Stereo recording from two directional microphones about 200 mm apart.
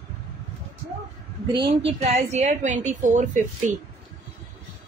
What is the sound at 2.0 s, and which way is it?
A woman's voice, 35° right (ahead or behind).